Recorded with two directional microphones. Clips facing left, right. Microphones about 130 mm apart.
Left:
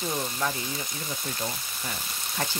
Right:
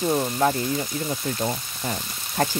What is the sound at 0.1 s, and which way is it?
Speech, 40° right (ahead or behind).